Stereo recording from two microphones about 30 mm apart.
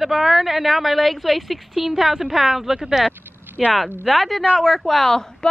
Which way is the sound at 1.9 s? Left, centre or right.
Centre.